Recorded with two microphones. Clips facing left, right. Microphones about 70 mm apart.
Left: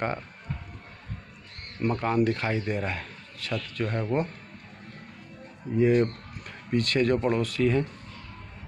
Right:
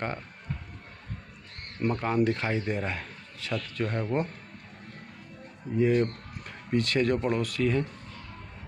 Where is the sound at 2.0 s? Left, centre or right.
Centre.